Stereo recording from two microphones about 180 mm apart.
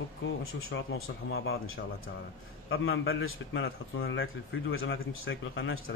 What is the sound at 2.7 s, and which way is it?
A man's voice, 90° left.